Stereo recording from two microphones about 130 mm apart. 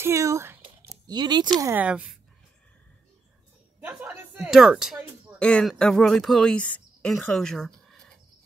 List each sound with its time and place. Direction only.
0.0 s a sound: 25° right (ahead or behind)
0.8 s speech: 30° right (ahead or behind)
1.6 s speech: 15° right (ahead or behind)
3.8 s a sound: 15° right (ahead or behind)
4.5 s speech: 5° right (ahead or behind)
5.4 s speech: 5° left (ahead or behind)